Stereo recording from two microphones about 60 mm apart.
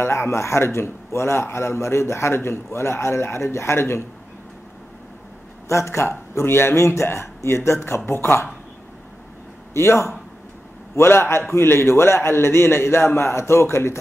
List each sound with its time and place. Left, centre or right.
0.0 s a man's voice: left
5.7 s a man's voice: left
9.8 s a man's voice: left